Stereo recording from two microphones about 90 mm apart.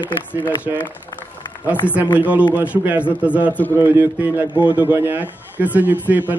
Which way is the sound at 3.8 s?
20° right (ahead or behind).